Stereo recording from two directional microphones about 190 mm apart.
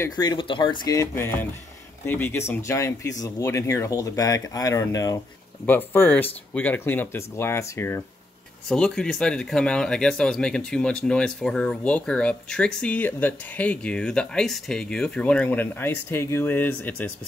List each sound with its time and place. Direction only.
0.0 s speech: 20° left (ahead or behind)
8.6 s speech: 5° left (ahead or behind)